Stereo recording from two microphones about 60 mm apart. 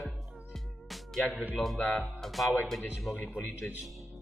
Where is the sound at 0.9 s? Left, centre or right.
Centre.